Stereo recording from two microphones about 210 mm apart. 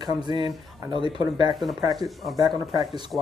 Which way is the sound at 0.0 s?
20° right (ahead or behind).